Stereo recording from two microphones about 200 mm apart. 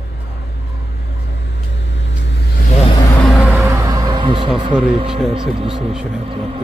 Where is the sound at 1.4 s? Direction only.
60° left (ahead or behind).